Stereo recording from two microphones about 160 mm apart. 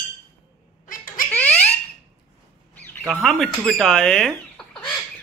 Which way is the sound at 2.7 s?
10° left (ahead or behind).